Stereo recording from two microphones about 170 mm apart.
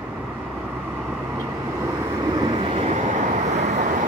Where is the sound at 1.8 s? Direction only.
25° right (ahead or behind); by 4.1 s 45° right (ahead or behind).